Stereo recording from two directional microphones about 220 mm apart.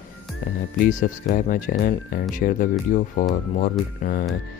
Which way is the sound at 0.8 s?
40° left (ahead or behind).